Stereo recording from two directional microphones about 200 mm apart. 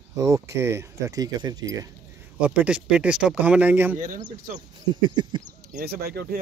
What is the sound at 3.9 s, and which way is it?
Speech, 45° right (ahead or behind).